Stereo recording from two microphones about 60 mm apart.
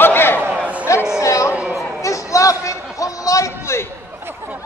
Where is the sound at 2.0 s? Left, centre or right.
Left.